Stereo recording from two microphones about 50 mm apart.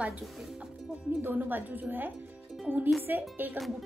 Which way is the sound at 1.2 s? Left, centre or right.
Right.